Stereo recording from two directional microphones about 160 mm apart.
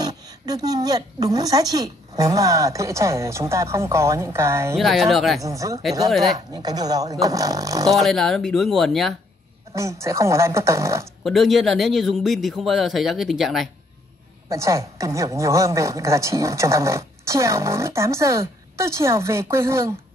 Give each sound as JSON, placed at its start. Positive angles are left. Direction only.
{"t": 0.0, "sound": "speech", "side_deg": -25}
{"t": 4.7, "sound": "speech", "side_deg": 0}
{"t": 5.4, "sound": "speech", "side_deg": -20}
{"t": 8.0, "sound": "speech", "side_deg": 0}
{"t": 9.8, "sound": "a woman's voice", "side_deg": -20}
{"t": 11.2, "sound": "speech", "side_deg": 0}
{"t": 14.5, "sound": "a woman's voice", "side_deg": -20}